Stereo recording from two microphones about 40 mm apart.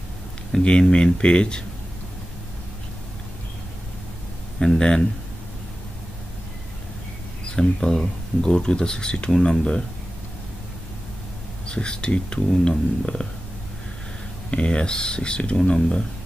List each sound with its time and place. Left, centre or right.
0.5 s speech: left
4.6 s speech: centre
7.4 s speech: centre
11.6 s speech: left
14.5 s speech: left